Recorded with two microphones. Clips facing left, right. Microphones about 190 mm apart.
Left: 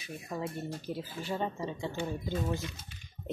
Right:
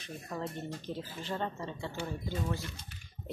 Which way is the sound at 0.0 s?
10° left (ahead or behind).